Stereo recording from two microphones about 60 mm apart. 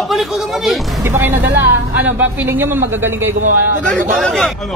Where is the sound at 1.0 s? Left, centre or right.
Right.